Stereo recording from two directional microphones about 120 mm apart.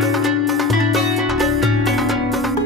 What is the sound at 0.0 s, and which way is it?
Music, centre (ahead or behind).